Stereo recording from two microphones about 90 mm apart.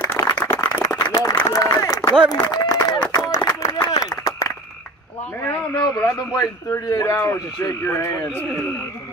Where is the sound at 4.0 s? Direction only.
40° left (ahead or behind).